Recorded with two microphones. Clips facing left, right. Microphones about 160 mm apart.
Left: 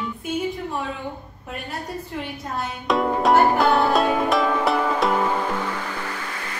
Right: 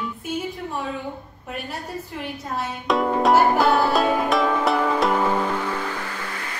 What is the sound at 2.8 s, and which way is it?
Music, centre (ahead or behind).